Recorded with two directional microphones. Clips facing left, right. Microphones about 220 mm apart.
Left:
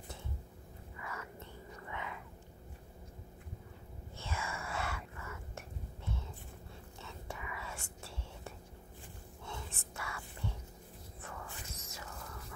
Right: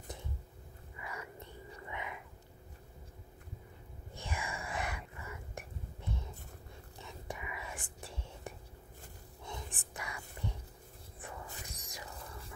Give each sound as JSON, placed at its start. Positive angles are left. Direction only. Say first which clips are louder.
{"t": 1.0, "sound": "whispering", "louder": "right 1 dB", "side_deg": -15}
{"t": 4.2, "sound": "whispering", "louder": "even", "side_deg": -15}
{"t": 7.0, "sound": "whispering", "louder": "right 2 dB", "side_deg": -15}
{"t": 11.1, "sound": "a sound", "louder": "right 1 dB", "side_deg": -15}
{"t": 12.1, "sound": "whispering", "louder": "even", "side_deg": -30}